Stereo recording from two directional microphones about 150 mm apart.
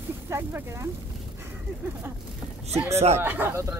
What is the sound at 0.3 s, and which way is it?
Speech, 15° right (ahead or behind).